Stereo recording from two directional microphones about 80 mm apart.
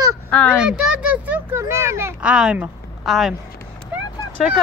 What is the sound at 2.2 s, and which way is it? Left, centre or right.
Speech, centre.